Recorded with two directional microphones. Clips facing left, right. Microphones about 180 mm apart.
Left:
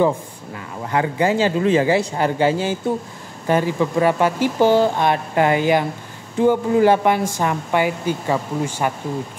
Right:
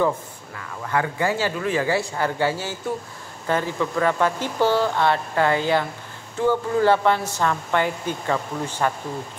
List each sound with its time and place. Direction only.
0.6 s speech: 20° left (ahead or behind)